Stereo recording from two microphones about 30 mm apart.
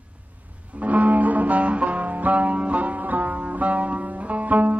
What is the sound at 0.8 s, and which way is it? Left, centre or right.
Music, right.